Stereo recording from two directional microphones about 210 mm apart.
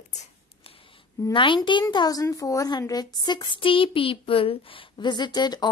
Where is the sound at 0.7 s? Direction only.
25° left (ahead or behind).